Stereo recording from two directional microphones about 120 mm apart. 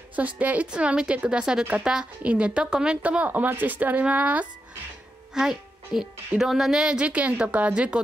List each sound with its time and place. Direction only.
0.1 s a woman's voice: 15° right (ahead or behind)